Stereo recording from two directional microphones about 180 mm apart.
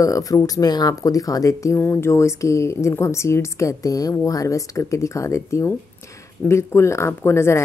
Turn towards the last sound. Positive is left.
turn(degrees=15)  # may be behind; listen again after turning